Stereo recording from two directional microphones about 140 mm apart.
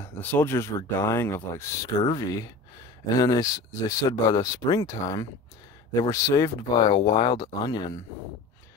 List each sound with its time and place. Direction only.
0.0 s speech: 15° left (ahead or behind)
6.9 s speech: 35° left (ahead or behind)